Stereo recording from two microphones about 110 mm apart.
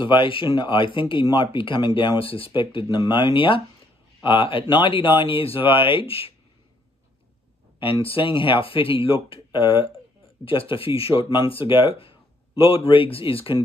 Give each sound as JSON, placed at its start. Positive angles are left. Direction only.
{"t": 0.0, "sound": "speech", "side_deg": 50}
{"t": 7.8, "sound": "speech", "side_deg": 55}